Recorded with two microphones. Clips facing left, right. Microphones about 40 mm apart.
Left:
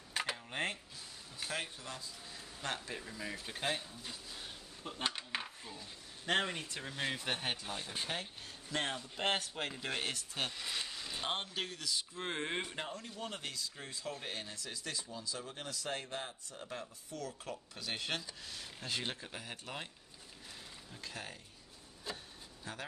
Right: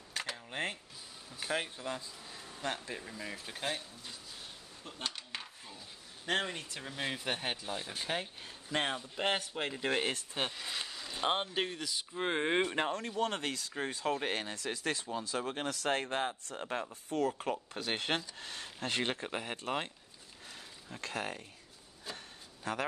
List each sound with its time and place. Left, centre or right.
0.1 s a sound: centre
0.5 s speech: centre
1.4 s speech: centre
2.6 s speech: centre
5.7 s speech: centre
9.8 s speech: right
10.5 s a sound: centre
11.1 s speech: centre
12.6 s speech: right
14.2 s speech: right
20.9 s speech: right
22.7 s speech: right